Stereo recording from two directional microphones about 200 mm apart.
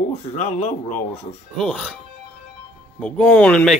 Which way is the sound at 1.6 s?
Centre (ahead or behind).